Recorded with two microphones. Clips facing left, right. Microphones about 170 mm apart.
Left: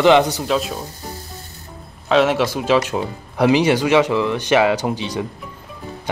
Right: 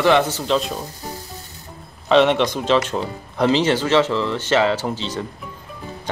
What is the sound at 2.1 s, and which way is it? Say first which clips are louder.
Speech: right 1 dB; centre (ahead or behind).